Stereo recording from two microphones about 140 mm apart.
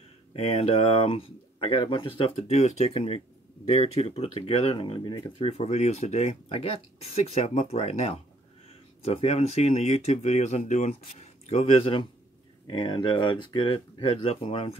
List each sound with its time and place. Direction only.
0.3 s speech: 45° left (ahead or behind)